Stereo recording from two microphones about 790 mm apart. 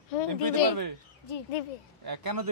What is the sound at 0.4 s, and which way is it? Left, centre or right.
Speech, right.